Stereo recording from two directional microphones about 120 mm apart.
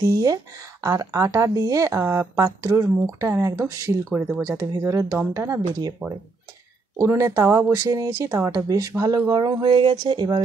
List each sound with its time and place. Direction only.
0.0 s speech: 30° right (ahead or behind)
4.1 s speech: 5° right (ahead or behind)
4.7 s speech: 30° right (ahead or behind)
6.0 s speech: 10° right (ahead or behind)
7.0 s speech: 30° right (ahead or behind)
9.4 s a sound: 40° right (ahead or behind)